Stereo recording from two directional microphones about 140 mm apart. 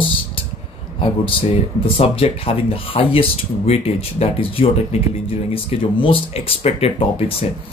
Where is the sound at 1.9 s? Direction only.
40° left (ahead or behind).